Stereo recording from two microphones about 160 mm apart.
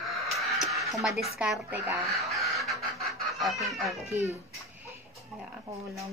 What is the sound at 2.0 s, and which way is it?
Chicken, centre (ahead or behind).